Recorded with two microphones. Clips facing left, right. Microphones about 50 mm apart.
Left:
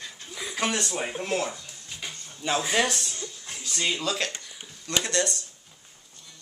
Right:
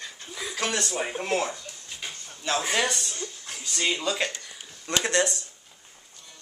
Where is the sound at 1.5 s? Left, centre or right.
Centre.